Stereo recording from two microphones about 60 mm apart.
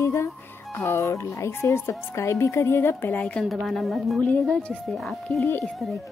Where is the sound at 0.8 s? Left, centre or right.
Left.